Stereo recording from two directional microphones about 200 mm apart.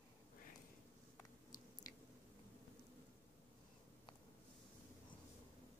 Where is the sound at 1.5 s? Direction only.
20° left (ahead or behind).